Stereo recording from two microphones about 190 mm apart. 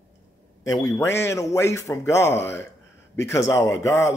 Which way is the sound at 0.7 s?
15° left (ahead or behind).